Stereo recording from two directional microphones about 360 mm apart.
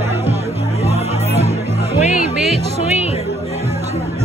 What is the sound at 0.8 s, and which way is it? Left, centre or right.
Music, centre.